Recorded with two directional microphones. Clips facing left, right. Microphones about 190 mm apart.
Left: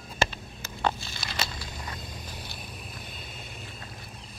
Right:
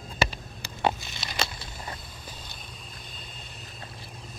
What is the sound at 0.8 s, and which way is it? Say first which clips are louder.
Crumpling: right 2 dB; 20° right (ahead or behind).